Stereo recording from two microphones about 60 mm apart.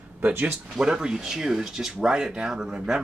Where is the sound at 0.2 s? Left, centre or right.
Right.